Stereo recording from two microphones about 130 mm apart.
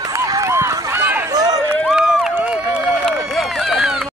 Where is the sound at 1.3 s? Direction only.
30° right (ahead or behind).